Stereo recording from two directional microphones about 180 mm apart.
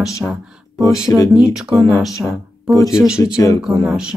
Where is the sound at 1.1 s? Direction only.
15° left (ahead or behind).